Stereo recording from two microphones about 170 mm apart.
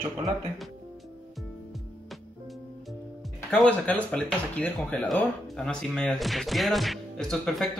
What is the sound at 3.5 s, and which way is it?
Speech, 5° left (ahead or behind).